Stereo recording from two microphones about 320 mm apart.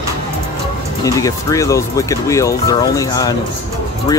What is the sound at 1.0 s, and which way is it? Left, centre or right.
Speech, centre.